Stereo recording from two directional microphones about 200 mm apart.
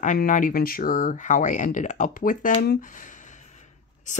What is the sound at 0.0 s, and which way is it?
Speech, 40° left (ahead or behind).